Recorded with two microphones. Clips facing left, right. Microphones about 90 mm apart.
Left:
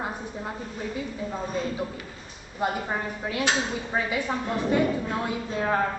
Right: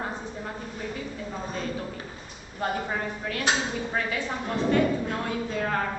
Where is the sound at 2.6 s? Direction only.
15° left (ahead or behind).